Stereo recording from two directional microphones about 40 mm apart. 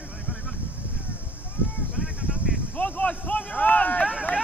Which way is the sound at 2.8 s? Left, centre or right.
Left.